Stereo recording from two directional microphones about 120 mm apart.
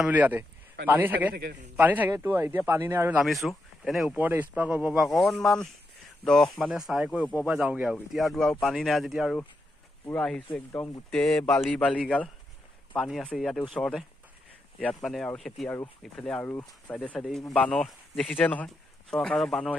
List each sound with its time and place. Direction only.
0.0 s a man's voice: 15° right (ahead or behind)
3.1 s speech: centre (ahead or behind)
4.2 s speech: 15° right (ahead or behind)
4.9 s speech: centre (ahead or behind)
13.0 s speech: centre (ahead or behind)